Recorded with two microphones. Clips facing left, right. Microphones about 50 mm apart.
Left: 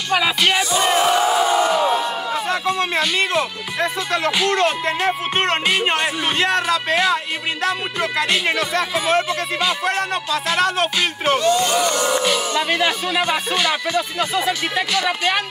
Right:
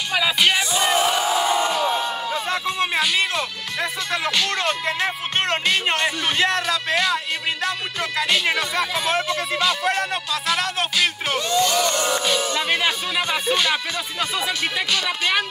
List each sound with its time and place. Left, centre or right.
0.4 s music: centre
0.7 s battle cry: left
2.8 s music: centre
4.3 s music: centre
4.6 s music: centre
11.4 s speech: left
15.0 s music: centre